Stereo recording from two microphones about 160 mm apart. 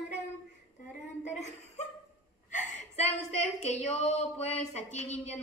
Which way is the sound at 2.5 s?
45° left (ahead or behind).